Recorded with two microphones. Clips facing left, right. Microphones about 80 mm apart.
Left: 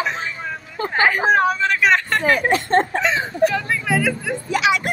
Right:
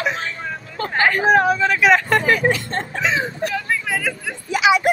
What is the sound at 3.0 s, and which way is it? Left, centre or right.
Speech, centre.